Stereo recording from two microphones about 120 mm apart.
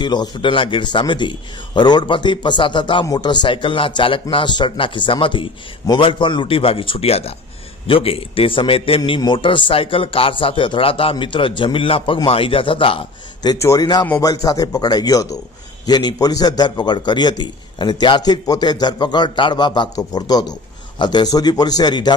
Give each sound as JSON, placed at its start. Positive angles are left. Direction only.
{"t": 0.0, "sound": "a man's voice", "side_deg": 40}
{"t": 13.6, "sound": "a man's voice", "side_deg": 25}